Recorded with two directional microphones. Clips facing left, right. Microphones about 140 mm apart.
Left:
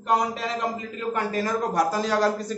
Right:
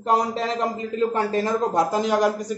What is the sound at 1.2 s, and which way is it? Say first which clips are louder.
A man's voice: right 3 dB; 25° right (ahead or behind).